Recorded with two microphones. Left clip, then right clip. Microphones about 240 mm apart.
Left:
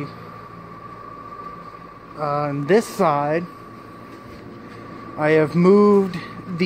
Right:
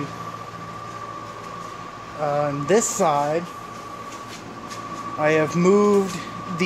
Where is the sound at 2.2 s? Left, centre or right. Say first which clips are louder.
Even; centre.